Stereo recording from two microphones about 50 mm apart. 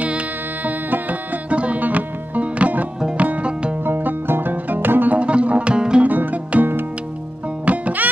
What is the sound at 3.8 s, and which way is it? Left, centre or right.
Music, right.